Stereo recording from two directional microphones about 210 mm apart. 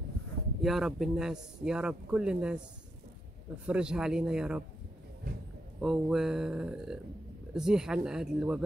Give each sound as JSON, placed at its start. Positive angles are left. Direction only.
{"t": 0.6, "sound": "a man's voice", "side_deg": 0}
{"t": 3.6, "sound": "a man's voice", "side_deg": -5}
{"t": 5.3, "sound": "a sound", "side_deg": -45}
{"t": 5.8, "sound": "a man's voice", "side_deg": 0}